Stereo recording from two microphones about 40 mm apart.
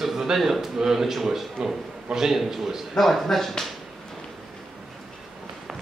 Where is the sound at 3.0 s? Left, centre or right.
Centre.